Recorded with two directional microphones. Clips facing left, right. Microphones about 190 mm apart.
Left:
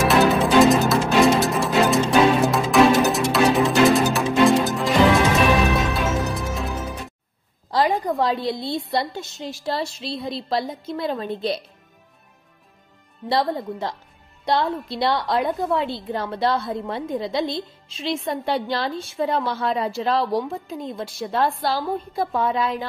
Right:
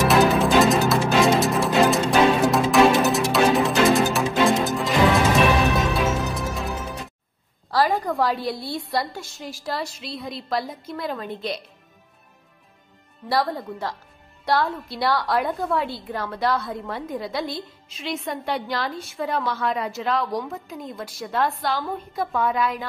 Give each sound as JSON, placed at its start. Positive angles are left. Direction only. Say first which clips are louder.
{"t": 0.1, "sound": "music", "louder": "left 1 dB", "side_deg": 0}
{"t": 7.7, "sound": "a woman's voice", "louder": "left 1 dB", "side_deg": 20}
{"t": 13.3, "sound": "a woman's voice", "louder": "left 2 dB", "side_deg": 20}